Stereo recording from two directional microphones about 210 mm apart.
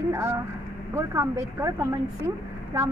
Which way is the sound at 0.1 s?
10° right (ahead or behind).